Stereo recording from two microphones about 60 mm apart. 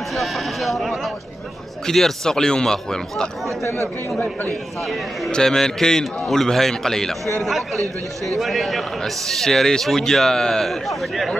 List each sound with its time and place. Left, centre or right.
0.1 s sheep: centre
1.9 s a man's voice: centre
3.6 s speech: left
4.8 s a man's voice: centre
5.3 s a man's voice: centre